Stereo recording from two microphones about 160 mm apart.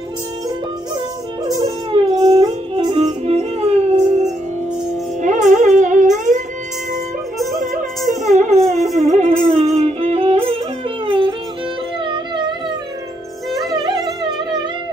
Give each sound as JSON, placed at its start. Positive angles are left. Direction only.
{"t": 1.6, "sound": "music", "side_deg": -35}
{"t": 8.2, "sound": "music", "side_deg": -50}
{"t": 13.7, "sound": "music", "side_deg": -25}